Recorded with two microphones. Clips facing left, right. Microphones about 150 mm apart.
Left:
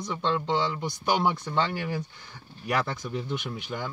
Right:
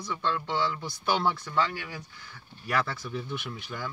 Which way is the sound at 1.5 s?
25° left (ahead or behind).